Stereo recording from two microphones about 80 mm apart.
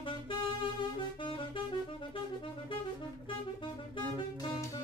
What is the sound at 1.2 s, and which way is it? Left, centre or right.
Music, left.